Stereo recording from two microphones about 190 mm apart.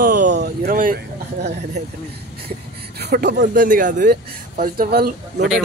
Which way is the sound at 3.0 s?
60° right (ahead or behind).